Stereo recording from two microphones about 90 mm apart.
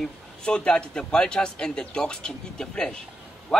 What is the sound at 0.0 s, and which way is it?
A man's voice, 10° left (ahead or behind).